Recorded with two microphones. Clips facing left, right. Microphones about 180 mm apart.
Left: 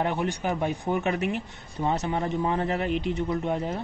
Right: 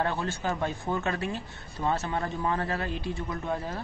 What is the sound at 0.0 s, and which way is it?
Speech, 15° left (ahead or behind).